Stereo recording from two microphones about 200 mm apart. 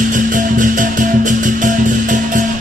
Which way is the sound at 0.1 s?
40° right (ahead or behind).